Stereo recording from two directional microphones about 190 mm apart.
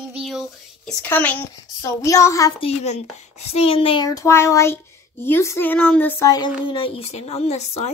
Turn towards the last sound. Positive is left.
turn(degrees=35)  # may be behind; listen again after turning